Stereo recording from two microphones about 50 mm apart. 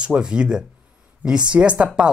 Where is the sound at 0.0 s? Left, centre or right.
Centre.